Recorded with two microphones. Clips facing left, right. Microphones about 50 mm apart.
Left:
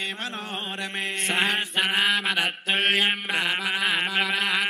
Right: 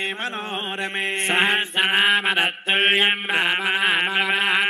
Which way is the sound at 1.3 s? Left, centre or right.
Right.